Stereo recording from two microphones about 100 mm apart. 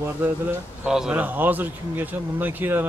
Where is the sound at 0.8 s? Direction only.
5° right (ahead or behind).